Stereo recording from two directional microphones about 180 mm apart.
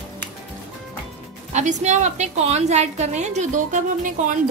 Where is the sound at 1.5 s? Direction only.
40° right (ahead or behind).